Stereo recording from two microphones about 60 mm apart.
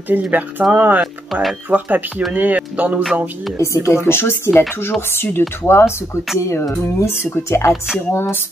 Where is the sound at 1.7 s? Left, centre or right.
Right.